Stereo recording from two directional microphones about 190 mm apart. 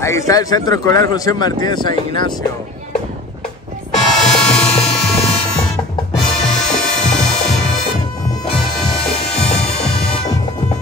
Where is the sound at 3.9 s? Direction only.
5° left (ahead or behind).